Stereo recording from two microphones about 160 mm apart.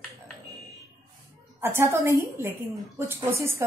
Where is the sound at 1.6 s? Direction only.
15° right (ahead or behind).